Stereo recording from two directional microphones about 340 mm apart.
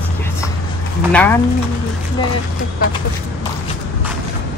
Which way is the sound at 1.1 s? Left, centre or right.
Centre.